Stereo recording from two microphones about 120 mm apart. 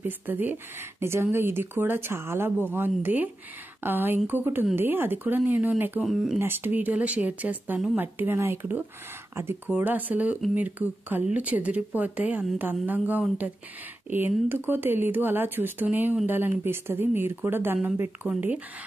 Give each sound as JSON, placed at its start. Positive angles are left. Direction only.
{"t": 0.0, "sound": "speech", "side_deg": -15}
{"t": 6.0, "sound": "speech", "side_deg": -5}
{"t": 6.4, "sound": "speech", "side_deg": -15}